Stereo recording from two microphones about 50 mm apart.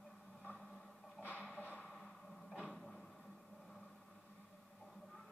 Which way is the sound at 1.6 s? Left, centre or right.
Left.